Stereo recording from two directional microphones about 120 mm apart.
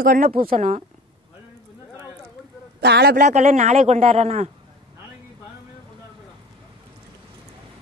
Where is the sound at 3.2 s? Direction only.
80° right; by 4.5 s 65° right (ahead or behind).